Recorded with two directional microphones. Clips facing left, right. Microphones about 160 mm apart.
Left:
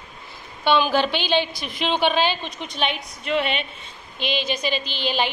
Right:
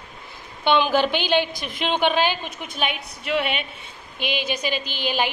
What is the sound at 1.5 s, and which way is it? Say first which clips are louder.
Speech: right 1 dB; 45° right (ahead or behind).